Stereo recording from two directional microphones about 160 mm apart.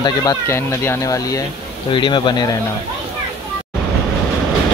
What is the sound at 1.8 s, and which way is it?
Speech, 30° left (ahead or behind).